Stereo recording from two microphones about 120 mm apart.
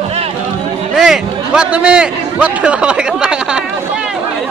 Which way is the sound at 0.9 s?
5° right (ahead or behind).